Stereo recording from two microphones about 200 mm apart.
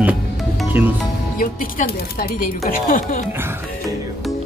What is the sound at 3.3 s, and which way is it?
Speech, 10° right (ahead or behind).